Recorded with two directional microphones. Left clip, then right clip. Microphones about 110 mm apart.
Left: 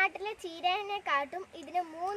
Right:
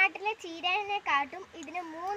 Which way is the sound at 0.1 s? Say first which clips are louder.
Right 4 dB; 30° left (ahead or behind).